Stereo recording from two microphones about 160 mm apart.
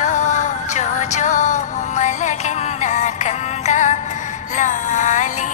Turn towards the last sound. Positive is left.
turn(degrees=50)  # may be behind; listen again after turning